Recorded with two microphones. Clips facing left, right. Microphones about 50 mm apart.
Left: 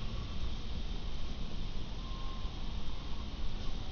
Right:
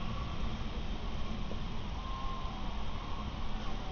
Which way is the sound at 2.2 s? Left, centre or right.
Right.